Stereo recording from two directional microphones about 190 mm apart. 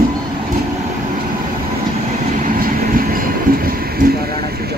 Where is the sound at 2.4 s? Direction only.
45° right (ahead or behind).